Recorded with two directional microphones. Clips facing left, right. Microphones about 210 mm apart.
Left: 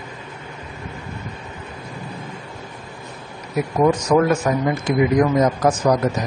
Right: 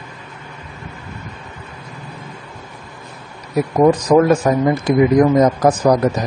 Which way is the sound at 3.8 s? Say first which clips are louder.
Right 4 dB; 35° right (ahead or behind).